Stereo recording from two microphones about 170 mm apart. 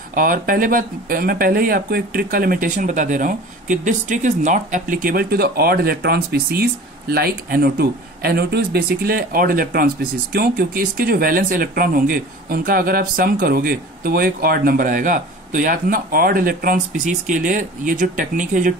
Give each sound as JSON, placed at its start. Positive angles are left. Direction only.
{"t": 0.1, "sound": "speech", "side_deg": -55}